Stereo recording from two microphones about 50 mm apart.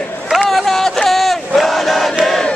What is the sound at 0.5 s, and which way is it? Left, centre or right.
Battle cry, centre.